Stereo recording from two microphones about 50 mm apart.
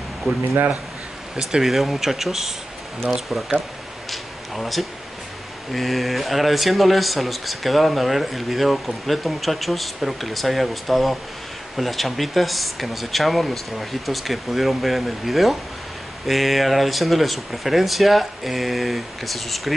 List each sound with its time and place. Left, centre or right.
0.3 s speech: right
1.5 s speech: centre
4.1 s a sound: centre
5.7 s speech: centre